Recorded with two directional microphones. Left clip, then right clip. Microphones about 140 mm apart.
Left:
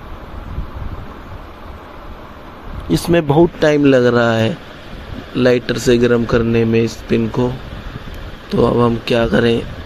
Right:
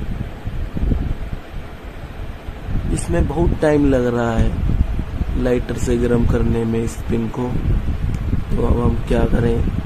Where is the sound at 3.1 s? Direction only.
35° left (ahead or behind).